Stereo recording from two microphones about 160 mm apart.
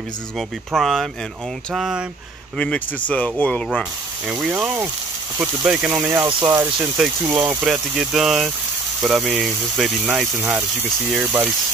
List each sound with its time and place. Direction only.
0.7 s speech: centre (ahead or behind)
2.5 s speech: 5° left (ahead or behind)
4.3 s speech: 10° right (ahead or behind)
5.9 s speech: 15° right (ahead or behind)